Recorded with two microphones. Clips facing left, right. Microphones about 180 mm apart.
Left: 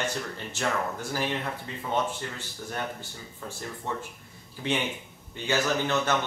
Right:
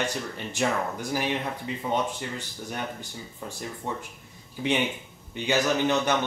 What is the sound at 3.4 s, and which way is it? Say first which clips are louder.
Speech: right 1 dB; 15° right (ahead or behind).